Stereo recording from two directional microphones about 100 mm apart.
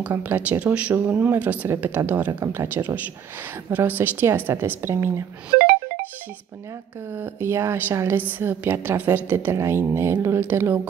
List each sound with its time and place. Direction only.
0.0 s a woman's voice: 15° right (ahead or behind)
7.1 s a woman's voice: 20° right (ahead or behind)